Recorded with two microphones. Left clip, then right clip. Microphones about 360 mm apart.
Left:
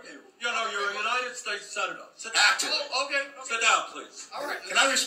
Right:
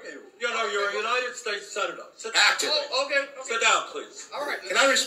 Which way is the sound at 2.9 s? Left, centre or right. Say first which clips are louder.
Right 3 dB; centre.